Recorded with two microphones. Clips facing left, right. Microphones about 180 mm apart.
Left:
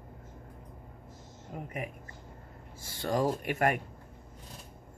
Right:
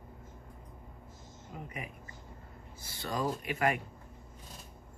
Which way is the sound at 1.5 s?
50° left (ahead or behind).